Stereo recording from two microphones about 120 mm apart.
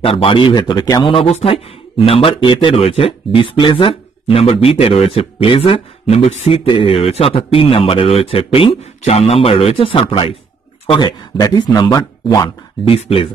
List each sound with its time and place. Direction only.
0.0 s speech: 50° left (ahead or behind)
1.1 s speech: 50° left (ahead or behind)
9.0 s speech: 60° left (ahead or behind); by 12.4 s 30° left (ahead or behind)
12.8 s speech: 50° left (ahead or behind)